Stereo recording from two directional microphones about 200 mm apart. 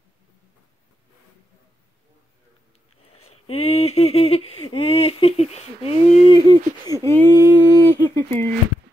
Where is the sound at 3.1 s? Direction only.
30° left (ahead or behind).